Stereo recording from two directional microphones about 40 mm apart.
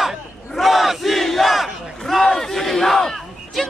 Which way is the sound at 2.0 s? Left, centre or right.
Centre.